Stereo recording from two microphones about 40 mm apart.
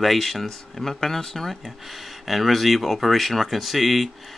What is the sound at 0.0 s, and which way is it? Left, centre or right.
Speech, centre.